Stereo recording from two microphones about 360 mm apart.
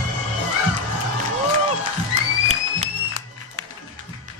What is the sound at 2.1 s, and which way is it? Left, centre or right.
Music, centre.